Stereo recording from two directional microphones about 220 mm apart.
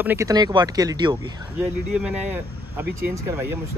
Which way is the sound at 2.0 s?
5° right (ahead or behind).